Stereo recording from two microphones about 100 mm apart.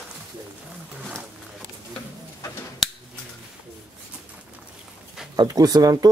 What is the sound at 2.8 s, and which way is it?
Finger snapping, centre (ahead or behind).